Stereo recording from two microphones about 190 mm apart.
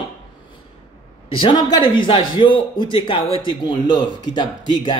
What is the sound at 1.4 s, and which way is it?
A man's voice, 25° left (ahead or behind).